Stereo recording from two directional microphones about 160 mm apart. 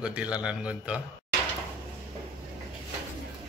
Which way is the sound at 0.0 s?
5° right (ahead or behind).